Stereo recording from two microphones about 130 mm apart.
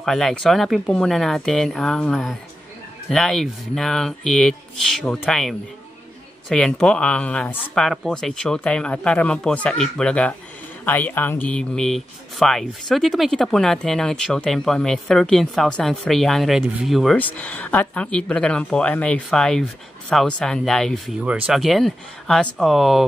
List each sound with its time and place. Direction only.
0.0 s speech: 5° left (ahead or behind)
17.2 s speech: 10° left (ahead or behind)